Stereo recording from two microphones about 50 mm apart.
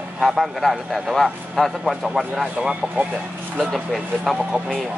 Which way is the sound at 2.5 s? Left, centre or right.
Right.